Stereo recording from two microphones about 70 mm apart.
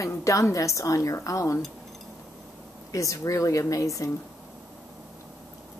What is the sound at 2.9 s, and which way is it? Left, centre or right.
A woman's voice, left.